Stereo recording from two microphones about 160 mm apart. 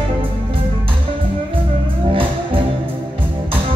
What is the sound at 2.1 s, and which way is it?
Music, 35° right (ahead or behind).